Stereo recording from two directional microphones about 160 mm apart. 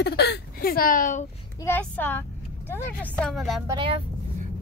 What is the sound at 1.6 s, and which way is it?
Speech, 10° left (ahead or behind).